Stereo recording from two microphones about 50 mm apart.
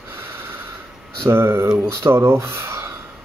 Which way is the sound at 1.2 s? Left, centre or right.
Right.